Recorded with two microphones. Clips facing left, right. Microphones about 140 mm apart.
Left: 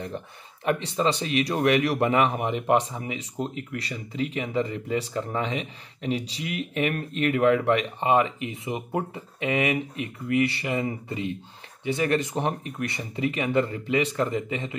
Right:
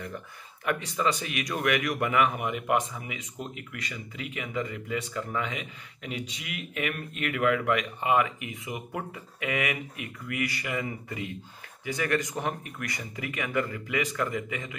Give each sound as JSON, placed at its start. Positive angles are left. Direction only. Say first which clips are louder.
{"t": 0.7, "sound": "speech", "louder": "left 4 dB", "side_deg": 30}